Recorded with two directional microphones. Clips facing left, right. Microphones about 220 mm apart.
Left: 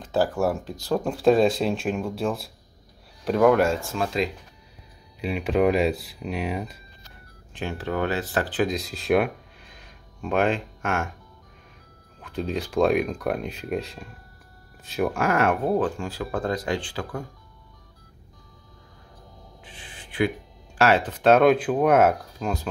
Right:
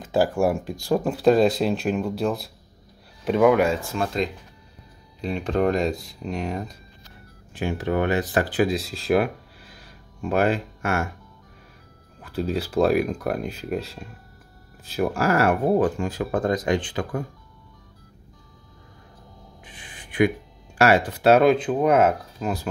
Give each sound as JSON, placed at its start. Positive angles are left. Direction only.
{"t": 0.0, "sound": "speech", "side_deg": -10}
{"t": 7.5, "sound": "speech", "side_deg": -15}
{"t": 12.2, "sound": "speech", "side_deg": -5}
{"t": 19.6, "sound": "speech", "side_deg": -15}